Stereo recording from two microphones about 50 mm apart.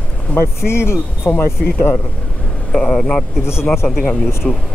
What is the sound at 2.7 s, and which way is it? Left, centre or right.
Speech, centre.